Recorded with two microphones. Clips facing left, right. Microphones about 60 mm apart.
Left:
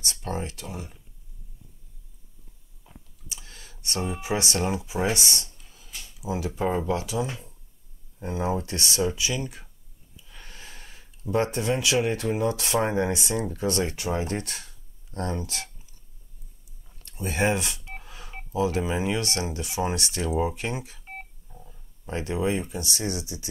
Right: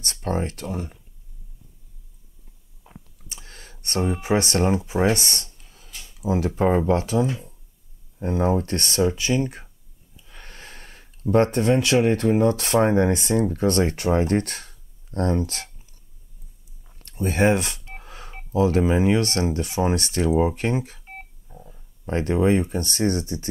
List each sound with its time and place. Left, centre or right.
0.0 s speech: right
2.9 s chewing: right
3.3 s a sound: right
3.8 s speech: right
17.1 s speech: right
18.0 s telephone dialing: right
18.5 s speech: right
21.0 s telephone dialing: centre
21.5 s a sound: centre
22.0 s speech: right